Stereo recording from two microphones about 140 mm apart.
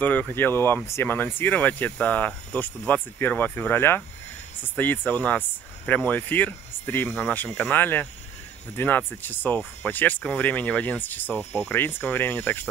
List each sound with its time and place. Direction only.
0.0 s speech: 10° left (ahead or behind)